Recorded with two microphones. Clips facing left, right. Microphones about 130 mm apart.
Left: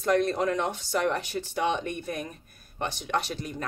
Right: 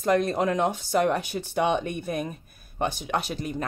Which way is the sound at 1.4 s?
55° right (ahead or behind).